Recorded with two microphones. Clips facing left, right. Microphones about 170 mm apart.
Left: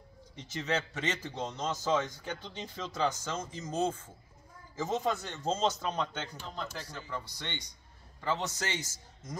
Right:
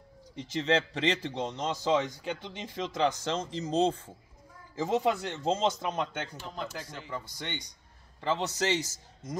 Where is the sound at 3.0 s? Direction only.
70° right (ahead or behind).